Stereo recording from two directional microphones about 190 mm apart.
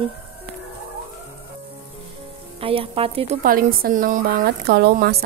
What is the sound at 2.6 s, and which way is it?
A woman's voice, 30° right (ahead or behind).